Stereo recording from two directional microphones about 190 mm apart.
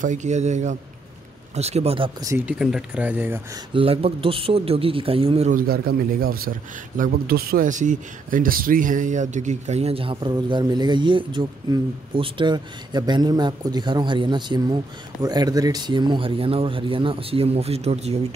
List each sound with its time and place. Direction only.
0.0 s a man's voice: 40° right (ahead or behind)
2.2 s speech: 10° right (ahead or behind)
3.7 s speech: 30° right (ahead or behind)
5.6 s speech: 50° right (ahead or behind); by 18.2 s 35° right (ahead or behind)